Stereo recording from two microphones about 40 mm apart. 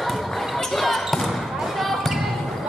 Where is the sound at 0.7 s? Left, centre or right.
Centre.